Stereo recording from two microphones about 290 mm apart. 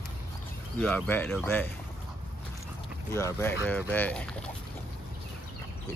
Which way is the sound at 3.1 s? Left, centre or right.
Centre.